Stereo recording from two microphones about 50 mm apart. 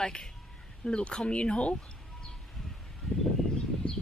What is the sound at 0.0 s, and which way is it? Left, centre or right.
A woman's voice, centre.